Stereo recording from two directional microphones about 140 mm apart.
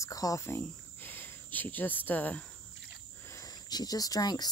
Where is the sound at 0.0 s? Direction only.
25° left (ahead or behind).